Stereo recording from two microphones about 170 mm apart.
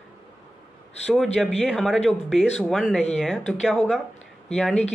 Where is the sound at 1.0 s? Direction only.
Centre (ahead or behind).